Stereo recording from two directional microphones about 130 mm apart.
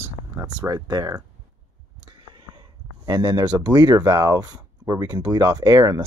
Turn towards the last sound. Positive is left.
turn(degrees=-30)  # may be behind; listen again after turning